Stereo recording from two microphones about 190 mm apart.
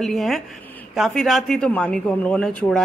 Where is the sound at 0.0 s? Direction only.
Centre (ahead or behind).